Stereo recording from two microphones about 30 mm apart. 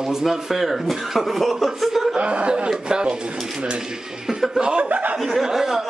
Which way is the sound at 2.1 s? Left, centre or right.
Right.